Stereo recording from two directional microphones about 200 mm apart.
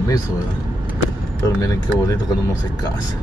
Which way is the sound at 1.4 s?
15° left (ahead or behind).